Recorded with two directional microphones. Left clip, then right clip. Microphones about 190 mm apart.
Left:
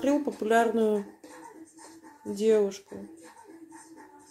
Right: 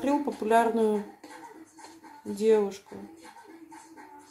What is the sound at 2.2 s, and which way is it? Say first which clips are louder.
Speech: even; 35° left (ahead or behind).